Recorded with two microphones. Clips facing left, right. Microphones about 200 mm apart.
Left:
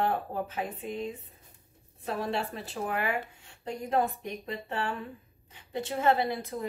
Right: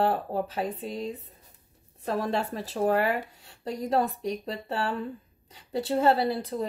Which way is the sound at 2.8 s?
35° right (ahead or behind).